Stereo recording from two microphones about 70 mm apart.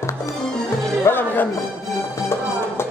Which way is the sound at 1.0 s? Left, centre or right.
Left.